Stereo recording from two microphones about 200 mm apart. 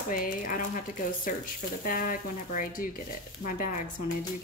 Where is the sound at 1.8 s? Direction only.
45° left (ahead or behind).